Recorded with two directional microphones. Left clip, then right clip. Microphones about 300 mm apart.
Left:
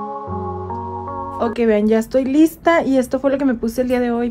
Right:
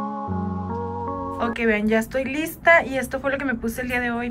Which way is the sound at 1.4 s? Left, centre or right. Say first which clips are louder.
Left 6 dB; centre.